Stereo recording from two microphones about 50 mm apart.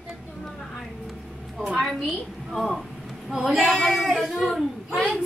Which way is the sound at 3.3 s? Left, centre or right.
Centre.